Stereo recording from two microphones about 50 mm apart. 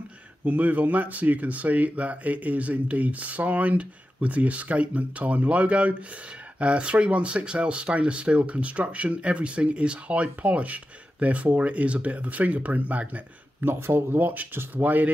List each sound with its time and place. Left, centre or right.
0.5 s speech: right
13.6 s speech: right